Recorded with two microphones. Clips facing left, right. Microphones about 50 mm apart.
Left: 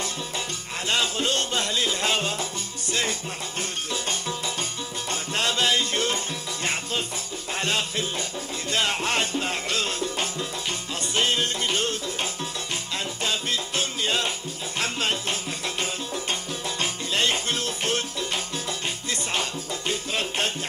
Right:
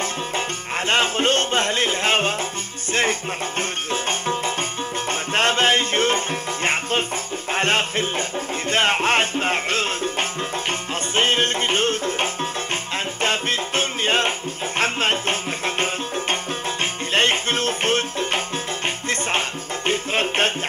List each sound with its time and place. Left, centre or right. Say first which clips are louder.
0.8 s speech: right 6 dB; right
2.9 s music: right 6 dB; right
5.3 s music: right 6 dB; right
13.2 s salsa music: right 6 dB; right
14.8 s music: right 6 dB; right
19.9 s music: right 7 dB; right